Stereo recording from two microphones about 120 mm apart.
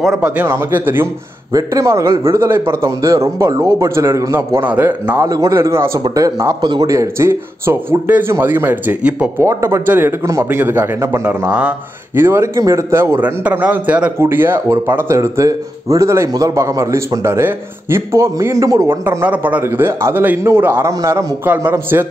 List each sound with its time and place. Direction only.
0.0 s a man's voice: 5° right (ahead or behind)
0.4 s speech: 20° right (ahead or behind)
1.5 s speech: 30° right (ahead or behind); by 9.3 s 15° right (ahead or behind)
9.4 s speech: 25° right (ahead or behind)
11.2 s speech: 10° right (ahead or behind)
12.2 s speech: 20° right (ahead or behind)